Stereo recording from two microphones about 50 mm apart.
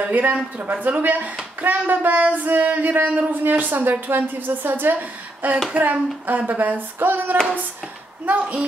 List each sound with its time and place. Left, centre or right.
0.1 s speech: right
8.3 s a woman's voice: right